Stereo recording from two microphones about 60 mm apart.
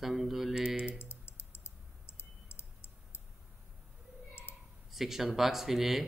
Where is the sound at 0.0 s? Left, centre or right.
Centre.